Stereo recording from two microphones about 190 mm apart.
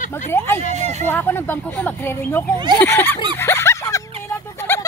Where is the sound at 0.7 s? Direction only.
35° right (ahead or behind).